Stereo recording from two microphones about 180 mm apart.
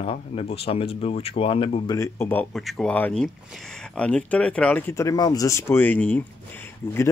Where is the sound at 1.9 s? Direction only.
15° left (ahead or behind).